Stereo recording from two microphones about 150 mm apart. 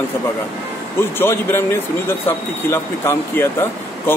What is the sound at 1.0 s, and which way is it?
Speech, 15° left (ahead or behind).